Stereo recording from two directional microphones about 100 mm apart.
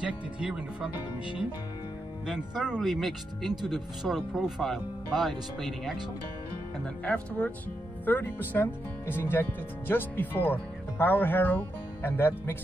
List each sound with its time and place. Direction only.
0.0 s speech: 10° right (ahead or behind)
7.1 s speech: 15° left (ahead or behind)